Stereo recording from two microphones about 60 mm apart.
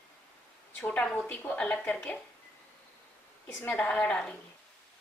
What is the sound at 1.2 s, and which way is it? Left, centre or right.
Speech, left.